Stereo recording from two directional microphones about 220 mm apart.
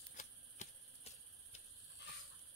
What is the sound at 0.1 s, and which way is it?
Shuffling cards, 35° left (ahead or behind).